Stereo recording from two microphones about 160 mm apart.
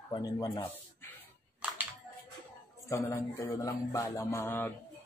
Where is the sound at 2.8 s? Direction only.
20° left (ahead or behind).